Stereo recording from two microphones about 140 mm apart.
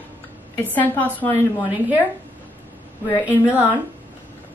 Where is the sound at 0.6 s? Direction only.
10° left (ahead or behind).